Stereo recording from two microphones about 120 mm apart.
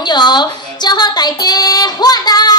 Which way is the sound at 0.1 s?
35° left (ahead or behind).